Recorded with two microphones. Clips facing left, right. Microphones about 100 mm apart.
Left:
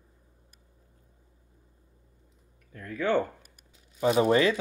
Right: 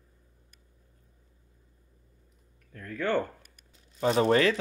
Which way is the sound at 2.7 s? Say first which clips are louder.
Left 2 dB; 5° left (ahead or behind).